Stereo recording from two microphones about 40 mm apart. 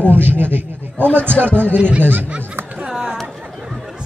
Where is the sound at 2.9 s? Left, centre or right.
Centre.